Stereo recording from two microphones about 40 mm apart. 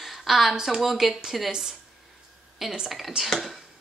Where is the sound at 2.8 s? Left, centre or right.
Centre.